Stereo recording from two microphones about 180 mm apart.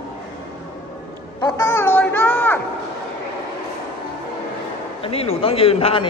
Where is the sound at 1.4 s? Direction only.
20° left (ahead or behind).